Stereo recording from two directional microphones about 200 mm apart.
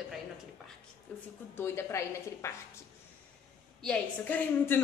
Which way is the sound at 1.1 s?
5° left (ahead or behind).